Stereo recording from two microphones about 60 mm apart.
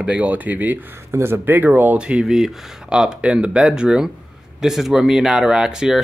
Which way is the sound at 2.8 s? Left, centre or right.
Centre.